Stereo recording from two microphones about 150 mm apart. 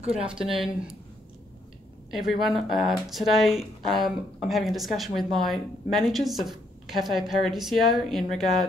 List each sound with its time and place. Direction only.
0.0 s speech: 45° right (ahead or behind)
0.4 s speech: 5° right (ahead or behind)
2.0 s a woman's voice: centre (ahead or behind)